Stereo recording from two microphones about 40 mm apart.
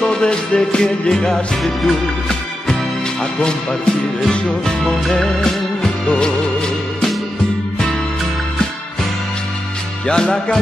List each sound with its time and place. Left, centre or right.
0.0 s music: left
1.6 s music: centre
3.3 s music: left
4.8 s music: centre
10.0 s music: left